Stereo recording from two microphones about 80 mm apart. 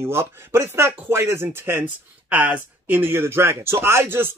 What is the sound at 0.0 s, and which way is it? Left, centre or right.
Speech, right.